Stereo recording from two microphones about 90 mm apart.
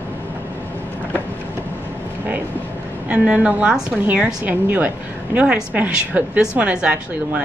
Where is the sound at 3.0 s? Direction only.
10° right (ahead or behind).